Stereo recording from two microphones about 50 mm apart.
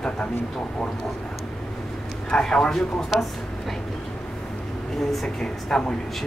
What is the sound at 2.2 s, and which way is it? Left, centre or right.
Speech, centre.